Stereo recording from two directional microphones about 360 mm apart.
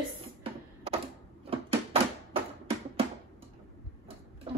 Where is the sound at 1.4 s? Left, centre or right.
Centre.